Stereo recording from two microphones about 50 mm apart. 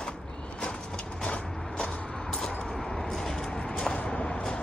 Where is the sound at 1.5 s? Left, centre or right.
Centre.